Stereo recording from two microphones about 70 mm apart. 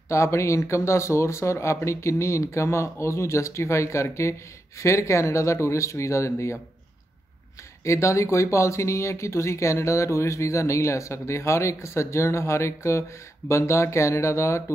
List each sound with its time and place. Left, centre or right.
0.1 s speech: left
7.8 s speech: left